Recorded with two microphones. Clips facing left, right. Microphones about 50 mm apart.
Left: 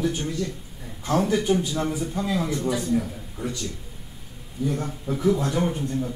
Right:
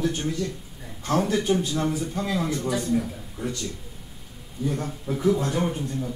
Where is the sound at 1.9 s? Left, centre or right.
Centre.